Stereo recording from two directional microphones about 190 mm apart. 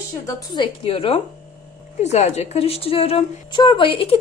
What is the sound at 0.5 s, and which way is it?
A woman's voice, 30° left (ahead or behind).